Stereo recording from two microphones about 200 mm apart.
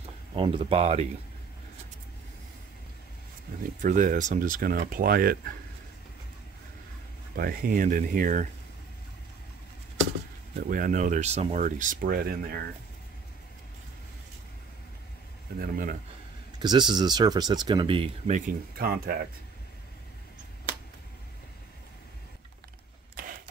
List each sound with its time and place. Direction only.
0.3 s speech: 25° right (ahead or behind)
3.8 s speech: 40° right (ahead or behind)
7.3 s speech: 45° right (ahead or behind)
10.6 s speech: 45° right (ahead or behind)
15.6 s speech: 45° right (ahead or behind)
16.5 s speech: 20° right (ahead or behind)
18.8 s speech: 50° right (ahead or behind)
23.1 s a sound: 45° right (ahead or behind)